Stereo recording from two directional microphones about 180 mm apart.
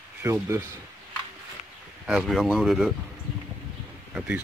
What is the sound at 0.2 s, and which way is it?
Speech, 15° right (ahead or behind).